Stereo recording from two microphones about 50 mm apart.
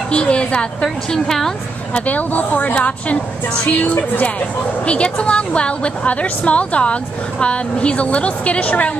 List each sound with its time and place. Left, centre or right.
0.1 s a woman's voice: left
0.8 s a woman's voice: centre
2.0 s a woman's voice: left
4.8 s a woman's voice: left